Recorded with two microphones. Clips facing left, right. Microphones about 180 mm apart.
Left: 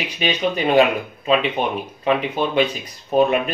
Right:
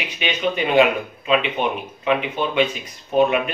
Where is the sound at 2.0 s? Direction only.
35° left (ahead or behind).